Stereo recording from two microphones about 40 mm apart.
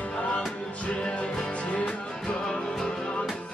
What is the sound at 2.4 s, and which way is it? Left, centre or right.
Music, centre.